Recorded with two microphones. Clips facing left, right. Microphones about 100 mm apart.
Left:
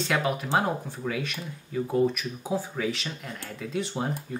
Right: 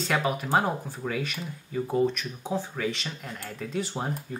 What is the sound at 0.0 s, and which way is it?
Speech, centre (ahead or behind).